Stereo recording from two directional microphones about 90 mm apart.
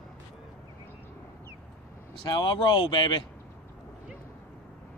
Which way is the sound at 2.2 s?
60° left (ahead or behind).